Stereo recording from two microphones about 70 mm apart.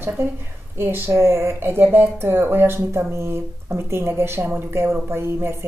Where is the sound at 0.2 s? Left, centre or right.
Right.